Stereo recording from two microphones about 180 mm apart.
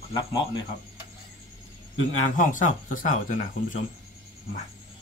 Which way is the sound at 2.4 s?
45° left (ahead or behind).